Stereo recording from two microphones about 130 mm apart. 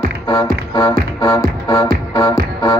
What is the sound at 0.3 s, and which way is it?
Music, 30° left (ahead or behind).